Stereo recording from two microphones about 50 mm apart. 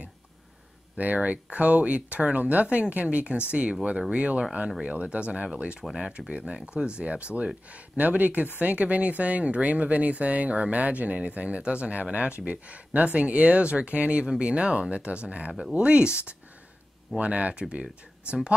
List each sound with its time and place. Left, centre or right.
0.9 s speech: right
14.2 s speech: centre